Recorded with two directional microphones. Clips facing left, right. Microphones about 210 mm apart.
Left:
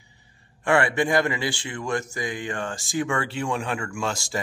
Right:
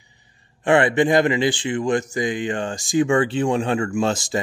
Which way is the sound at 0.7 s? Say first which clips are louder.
Right 5 dB; 20° right (ahead or behind).